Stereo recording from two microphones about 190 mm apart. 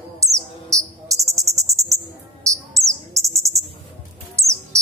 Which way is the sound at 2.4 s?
15° right (ahead or behind).